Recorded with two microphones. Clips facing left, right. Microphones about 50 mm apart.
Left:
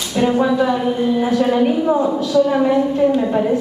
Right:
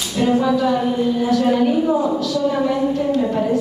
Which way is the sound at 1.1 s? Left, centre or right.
Left.